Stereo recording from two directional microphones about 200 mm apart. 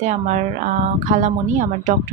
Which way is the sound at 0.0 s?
40° right (ahead or behind).